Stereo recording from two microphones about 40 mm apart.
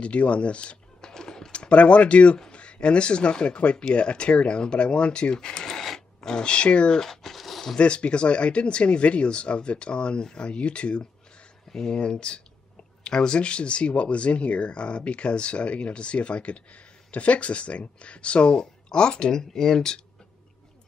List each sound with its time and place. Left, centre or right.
0.0 s speech: left
1.0 s typing: centre
2.5 s speech: left
6.9 s a sound: centre
7.8 s speech: left
19.3 s speech: centre